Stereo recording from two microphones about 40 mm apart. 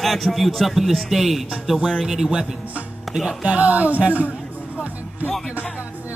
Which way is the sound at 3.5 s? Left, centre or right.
Right.